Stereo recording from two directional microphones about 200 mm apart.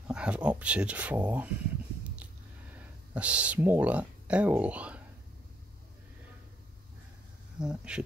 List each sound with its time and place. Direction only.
0.1 s speech: 5° right (ahead or behind)
3.2 s speech: 5° right (ahead or behind)
7.5 s speech: 5° right (ahead or behind)